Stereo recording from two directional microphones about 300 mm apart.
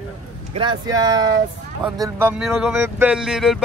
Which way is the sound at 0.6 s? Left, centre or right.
Centre.